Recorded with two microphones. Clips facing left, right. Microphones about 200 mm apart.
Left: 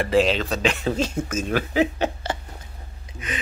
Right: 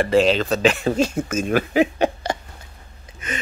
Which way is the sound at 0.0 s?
Centre (ahead or behind).